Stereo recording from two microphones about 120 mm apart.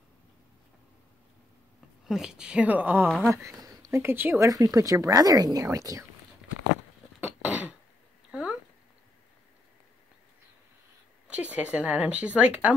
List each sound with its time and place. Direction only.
2.0 s a woman's voice: 5° right (ahead or behind)
3.1 s speech: centre (ahead or behind)
3.4 s speech: 30° right (ahead or behind)
4.5 s speech: 30° right (ahead or behind)
7.2 s cough: 15° right (ahead or behind)
8.3 s a sound: 10° right (ahead or behind)
11.2 s a woman's voice: 10° right (ahead or behind)